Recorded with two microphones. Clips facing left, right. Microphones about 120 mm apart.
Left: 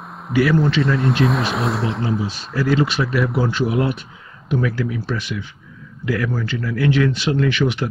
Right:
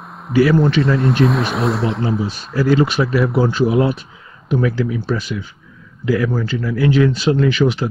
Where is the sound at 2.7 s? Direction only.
40° right (ahead or behind).